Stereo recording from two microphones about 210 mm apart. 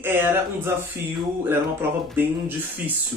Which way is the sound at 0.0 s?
10° right (ahead or behind).